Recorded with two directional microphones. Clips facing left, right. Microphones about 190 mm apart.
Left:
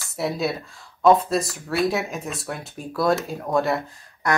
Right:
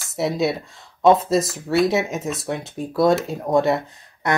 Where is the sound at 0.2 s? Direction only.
20° right (ahead or behind).